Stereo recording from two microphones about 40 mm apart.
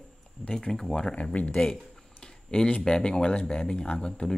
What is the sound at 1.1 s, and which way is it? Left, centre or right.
Speech, left.